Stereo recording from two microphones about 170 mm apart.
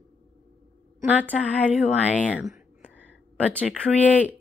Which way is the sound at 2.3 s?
5° right (ahead or behind).